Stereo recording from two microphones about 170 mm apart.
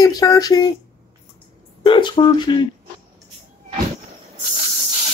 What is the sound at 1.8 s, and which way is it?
Speech, 30° left (ahead or behind).